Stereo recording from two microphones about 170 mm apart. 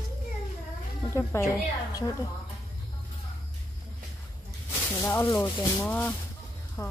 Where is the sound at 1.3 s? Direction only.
15° left (ahead or behind).